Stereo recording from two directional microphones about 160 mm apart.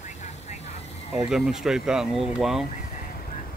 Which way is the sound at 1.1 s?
5° right (ahead or behind).